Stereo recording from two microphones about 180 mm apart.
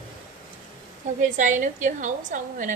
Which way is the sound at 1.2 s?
45° right (ahead or behind).